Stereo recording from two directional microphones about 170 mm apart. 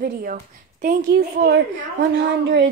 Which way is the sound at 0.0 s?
55° right (ahead or behind).